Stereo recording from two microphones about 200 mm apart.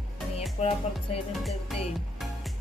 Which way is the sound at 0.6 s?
30° left (ahead or behind).